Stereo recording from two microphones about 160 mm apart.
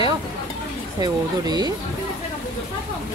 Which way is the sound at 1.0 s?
25° right (ahead or behind).